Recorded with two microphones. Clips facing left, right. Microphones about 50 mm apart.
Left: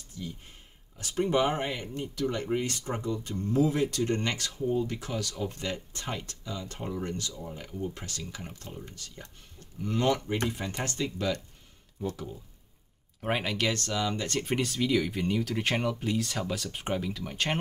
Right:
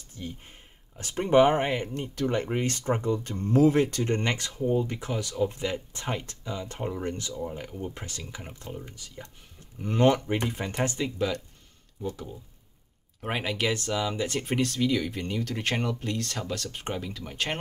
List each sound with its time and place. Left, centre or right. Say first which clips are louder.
0.1 s speech: right 1 dB; right
4.0 s speech: right 2 dB; right
9.8 s speech: right 5 dB; right
11.1 s speech: right 1 dB; centre
13.2 s speech: even; centre